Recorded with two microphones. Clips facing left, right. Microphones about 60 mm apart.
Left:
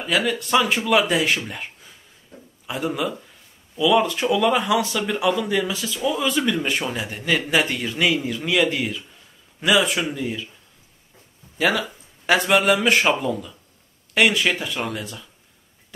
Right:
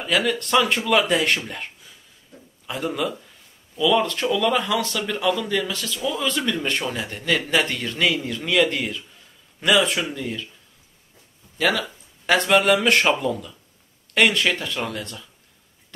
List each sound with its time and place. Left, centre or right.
0.0 s a man's voice: centre
11.5 s speech: centre